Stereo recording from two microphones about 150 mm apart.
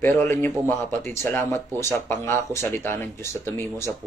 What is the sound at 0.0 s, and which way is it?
Speech, 15° left (ahead or behind).